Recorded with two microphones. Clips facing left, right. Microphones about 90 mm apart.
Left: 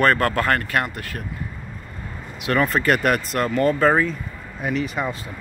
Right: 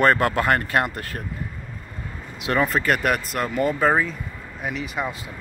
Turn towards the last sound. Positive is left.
turn(degrees=-5)  # may be behind; listen again after turning